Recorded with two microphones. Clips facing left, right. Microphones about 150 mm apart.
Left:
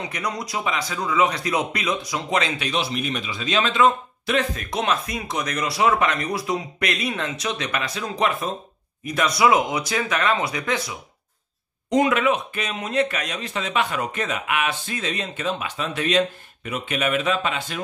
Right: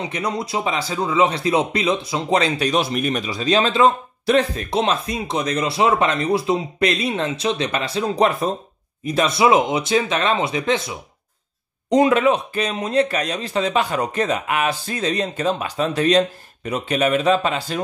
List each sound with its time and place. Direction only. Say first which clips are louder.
0.0 s speech: right 4 dB; 25° right (ahead or behind)